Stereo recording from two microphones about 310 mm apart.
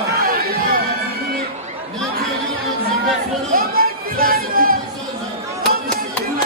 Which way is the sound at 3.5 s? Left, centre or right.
Right.